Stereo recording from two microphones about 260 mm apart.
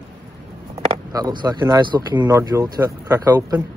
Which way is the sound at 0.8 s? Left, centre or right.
Centre.